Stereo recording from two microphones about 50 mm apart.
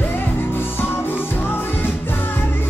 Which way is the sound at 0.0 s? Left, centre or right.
Left.